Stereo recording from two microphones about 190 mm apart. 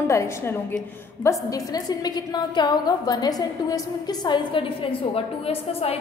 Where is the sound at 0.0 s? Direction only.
15° left (ahead or behind).